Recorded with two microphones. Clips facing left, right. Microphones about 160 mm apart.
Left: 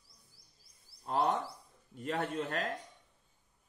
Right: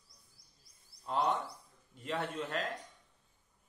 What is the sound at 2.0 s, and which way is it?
Speech, 50° left (ahead or behind).